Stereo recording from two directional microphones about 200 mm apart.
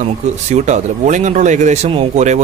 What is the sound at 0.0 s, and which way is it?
Speech, 35° right (ahead or behind).